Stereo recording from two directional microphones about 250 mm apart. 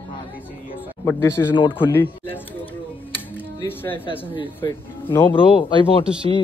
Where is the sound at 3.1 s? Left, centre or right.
Centre.